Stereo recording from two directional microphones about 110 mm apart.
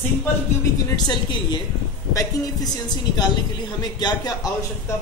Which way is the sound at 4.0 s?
40° left (ahead or behind).